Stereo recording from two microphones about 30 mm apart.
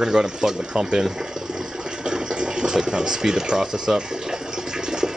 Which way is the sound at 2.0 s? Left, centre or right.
Right.